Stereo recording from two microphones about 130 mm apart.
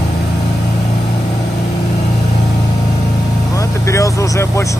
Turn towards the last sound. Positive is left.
turn(degrees=20)  # may be behind; listen again after turning